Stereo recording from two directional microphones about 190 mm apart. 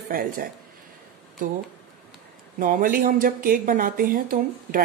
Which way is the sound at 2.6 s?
45° right (ahead or behind).